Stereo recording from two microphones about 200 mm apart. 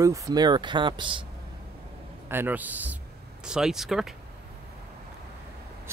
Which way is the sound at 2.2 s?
10° right (ahead or behind).